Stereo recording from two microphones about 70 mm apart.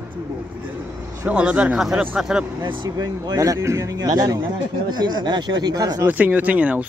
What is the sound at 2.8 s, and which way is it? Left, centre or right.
Speech, right.